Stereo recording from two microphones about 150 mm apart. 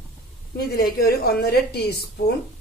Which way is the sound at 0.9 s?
90° left.